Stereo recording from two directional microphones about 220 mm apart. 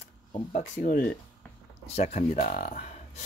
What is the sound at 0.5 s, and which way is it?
Speech, 35° left (ahead or behind).